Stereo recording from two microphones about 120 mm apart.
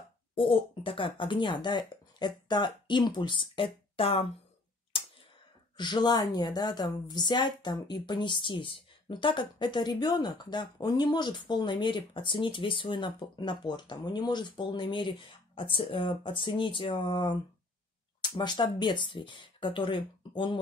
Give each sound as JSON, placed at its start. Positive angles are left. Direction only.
{"t": 0.4, "sound": "speech", "side_deg": 45}
{"t": 5.8, "sound": "a woman's voice", "side_deg": 35}
{"t": 18.4, "sound": "speech", "side_deg": 40}